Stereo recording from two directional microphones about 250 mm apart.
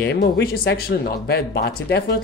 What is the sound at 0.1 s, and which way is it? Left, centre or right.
Speech, left.